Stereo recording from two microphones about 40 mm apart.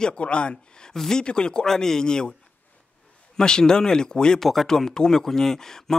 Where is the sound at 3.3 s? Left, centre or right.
Centre.